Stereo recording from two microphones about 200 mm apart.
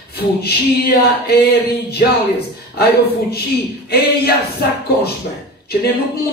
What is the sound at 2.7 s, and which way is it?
Speech, 55° left (ahead or behind).